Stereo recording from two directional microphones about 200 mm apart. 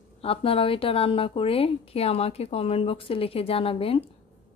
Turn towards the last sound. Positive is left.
turn(degrees=30)  # may be behind; listen again after turning